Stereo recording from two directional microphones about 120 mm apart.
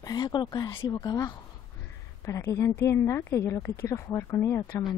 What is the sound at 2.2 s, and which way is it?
A woman's voice, 25° left (ahead or behind).